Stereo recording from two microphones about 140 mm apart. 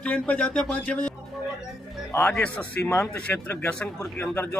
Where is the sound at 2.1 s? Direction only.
10° left (ahead or behind).